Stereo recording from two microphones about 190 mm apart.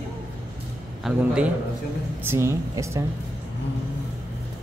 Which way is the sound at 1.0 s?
5° right (ahead or behind).